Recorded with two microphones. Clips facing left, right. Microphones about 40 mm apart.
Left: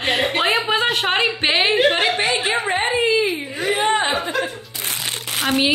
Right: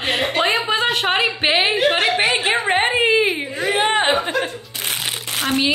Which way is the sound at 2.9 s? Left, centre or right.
Right.